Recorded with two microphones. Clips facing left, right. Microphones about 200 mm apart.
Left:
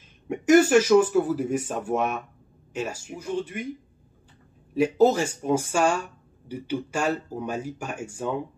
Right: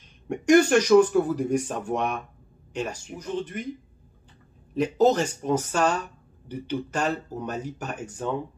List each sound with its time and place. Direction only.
0.3 s speech: 5° left (ahead or behind)
4.7 s speech: 10° left (ahead or behind)